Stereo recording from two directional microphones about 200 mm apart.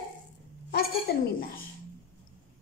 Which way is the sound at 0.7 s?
50° left (ahead or behind).